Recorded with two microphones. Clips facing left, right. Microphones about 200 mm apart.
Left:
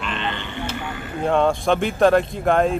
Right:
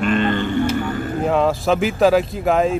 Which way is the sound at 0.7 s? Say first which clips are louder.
Right 8 dB; 40° right (ahead or behind).